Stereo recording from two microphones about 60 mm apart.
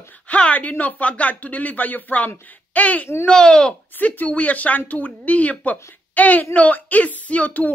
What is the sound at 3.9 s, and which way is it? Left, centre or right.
A woman's voice, left.